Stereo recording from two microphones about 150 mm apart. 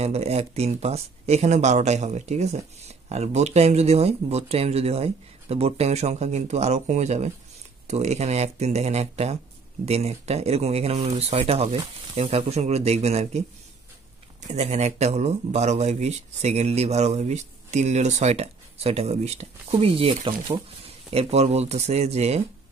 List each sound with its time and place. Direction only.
0.0 s speech: 45° right (ahead or behind)
14.5 s speech: 50° right (ahead or behind)